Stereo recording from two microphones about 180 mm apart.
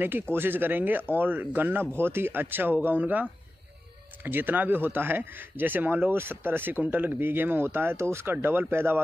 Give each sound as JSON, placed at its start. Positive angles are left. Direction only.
{"t": 0.0, "sound": "speech", "side_deg": -10}